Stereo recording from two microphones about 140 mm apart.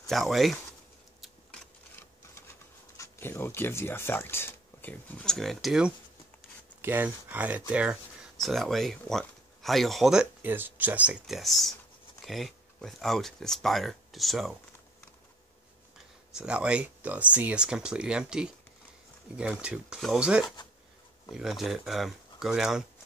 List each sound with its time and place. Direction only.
0.0 s speech: centre (ahead or behind)
3.0 s speech: 15° left (ahead or behind); by 5.9 s 5° right (ahead or behind)
6.8 s speech: 15° right (ahead or behind)
10.4 s speech: 15° right (ahead or behind)
16.3 s speech: 5° right (ahead or behind)